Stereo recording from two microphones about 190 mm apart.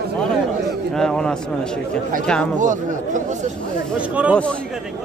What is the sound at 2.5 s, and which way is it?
Speech, 40° right (ahead or behind).